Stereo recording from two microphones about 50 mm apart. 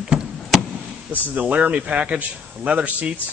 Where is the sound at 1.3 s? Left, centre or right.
Right.